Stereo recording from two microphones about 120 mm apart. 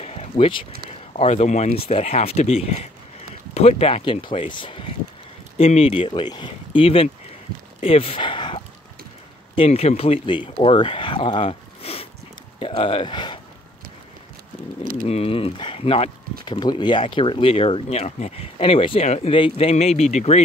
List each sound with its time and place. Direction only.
0.0 s a sound: 60° left (ahead or behind)
0.8 s speech: 65° left (ahead or behind); by 8.6 s 45° left (ahead or behind)
9.6 s speech: 65° left (ahead or behind); by 13.4 s 40° left (ahead or behind)
15.0 s speech: 55° left (ahead or behind)
16.4 s speech: 40° left (ahead or behind); by 20.4 s 70° left (ahead or behind)